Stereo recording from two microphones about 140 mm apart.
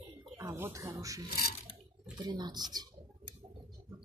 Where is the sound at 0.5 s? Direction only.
20° right (ahead or behind).